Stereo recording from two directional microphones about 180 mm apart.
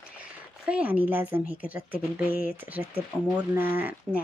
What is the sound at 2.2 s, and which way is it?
Speech, 50° left (ahead or behind).